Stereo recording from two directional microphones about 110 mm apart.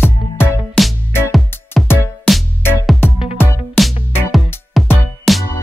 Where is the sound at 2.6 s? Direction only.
20° left (ahead or behind).